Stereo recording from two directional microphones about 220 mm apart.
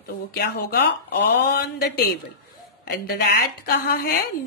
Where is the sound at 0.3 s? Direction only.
45° left (ahead or behind).